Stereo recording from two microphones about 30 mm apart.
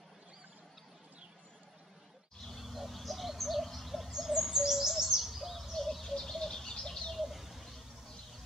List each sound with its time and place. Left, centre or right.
2.5 s a sound: centre
2.9 s turkey: centre
4.4 s bird: centre
5.7 s bird: centre
7.2 s bird: centre